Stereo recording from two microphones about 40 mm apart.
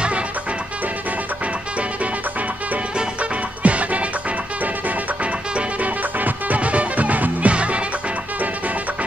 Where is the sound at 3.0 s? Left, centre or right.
Right.